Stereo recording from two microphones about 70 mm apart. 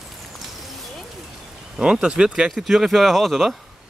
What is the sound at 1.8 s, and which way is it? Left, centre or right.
Speech, centre.